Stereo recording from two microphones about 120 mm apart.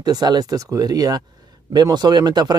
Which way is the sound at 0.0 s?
35° right (ahead or behind).